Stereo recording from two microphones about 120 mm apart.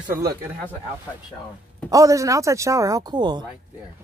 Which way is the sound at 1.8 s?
30° right (ahead or behind).